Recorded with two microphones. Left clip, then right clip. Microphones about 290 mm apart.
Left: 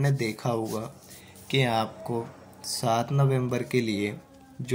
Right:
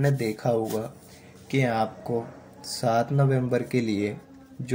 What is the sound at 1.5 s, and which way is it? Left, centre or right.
Speech, centre.